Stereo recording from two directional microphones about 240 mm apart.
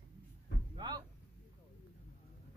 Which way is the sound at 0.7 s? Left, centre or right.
Centre.